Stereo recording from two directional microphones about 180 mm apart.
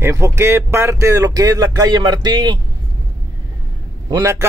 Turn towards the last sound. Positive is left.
turn(degrees=-15)  # may be behind; listen again after turning